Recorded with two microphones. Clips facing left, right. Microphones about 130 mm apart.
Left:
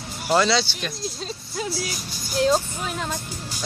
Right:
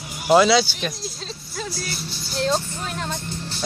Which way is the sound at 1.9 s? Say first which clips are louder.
Right 2 dB; 45° left (ahead or behind).